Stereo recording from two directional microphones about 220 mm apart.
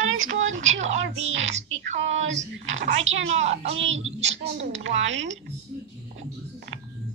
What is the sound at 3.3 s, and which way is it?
A child's voice, 30° right (ahead or behind).